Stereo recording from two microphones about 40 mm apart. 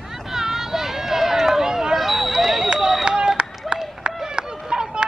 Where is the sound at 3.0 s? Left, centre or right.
Right.